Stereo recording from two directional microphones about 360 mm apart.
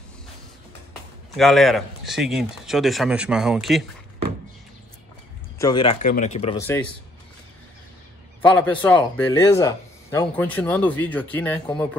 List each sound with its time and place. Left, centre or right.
1.3 s speech: centre
5.6 s speech: centre
8.4 s speech: centre